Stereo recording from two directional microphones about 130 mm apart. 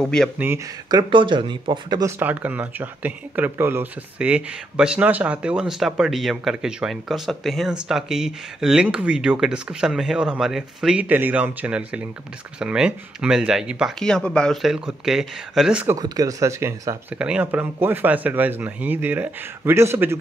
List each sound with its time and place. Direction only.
0.0 s speech: 5° left (ahead or behind)
0.8 s speech: 35° right (ahead or behind)
2.0 s speech: 15° right (ahead or behind)
15.9 s speech: 30° right (ahead or behind)
17.1 s speech: 10° right (ahead or behind)